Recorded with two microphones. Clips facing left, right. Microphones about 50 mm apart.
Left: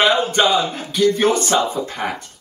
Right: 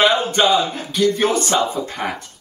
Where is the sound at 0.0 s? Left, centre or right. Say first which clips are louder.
Even; centre.